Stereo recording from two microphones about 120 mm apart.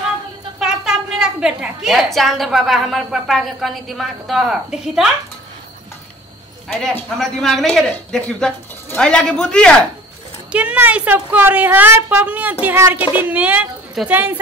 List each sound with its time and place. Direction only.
0.6 s a woman's voice: 5° right (ahead or behind)
6.7 s a woman's voice: 5° left (ahead or behind)
10.5 s a woman's voice: 10° right (ahead or behind)